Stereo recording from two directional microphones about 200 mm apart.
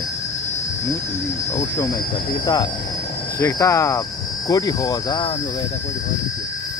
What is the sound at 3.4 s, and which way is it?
Speech, 15° left (ahead or behind).